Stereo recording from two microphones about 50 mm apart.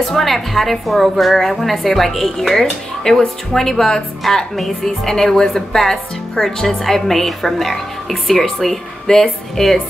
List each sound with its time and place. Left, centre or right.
0.0 s a woman's voice: centre